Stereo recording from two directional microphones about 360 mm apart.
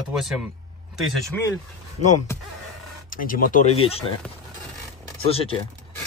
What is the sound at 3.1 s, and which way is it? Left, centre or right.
Speech, left.